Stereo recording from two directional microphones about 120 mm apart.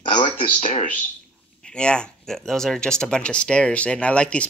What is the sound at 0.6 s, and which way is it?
Speech, 55° left (ahead or behind).